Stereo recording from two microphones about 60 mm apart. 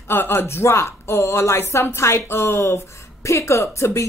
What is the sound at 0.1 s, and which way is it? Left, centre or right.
Speech, left.